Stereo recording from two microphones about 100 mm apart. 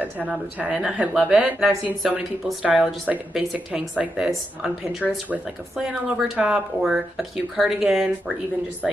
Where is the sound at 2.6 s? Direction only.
5° right (ahead or behind).